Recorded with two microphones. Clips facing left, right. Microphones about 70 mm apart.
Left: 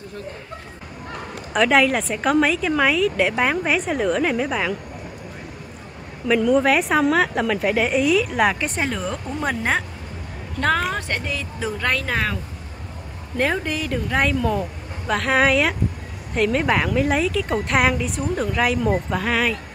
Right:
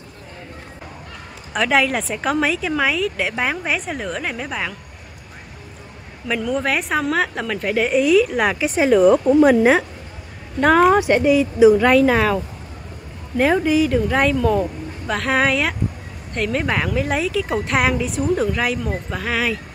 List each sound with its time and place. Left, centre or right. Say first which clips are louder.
1.5 s a woman's voice: left 1 dB; centre
6.2 s a woman's voice: left 5 dB; centre
13.4 s a woman's voice: right 7 dB; centre